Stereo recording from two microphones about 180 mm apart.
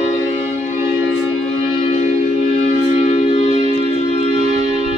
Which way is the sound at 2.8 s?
40° left (ahead or behind).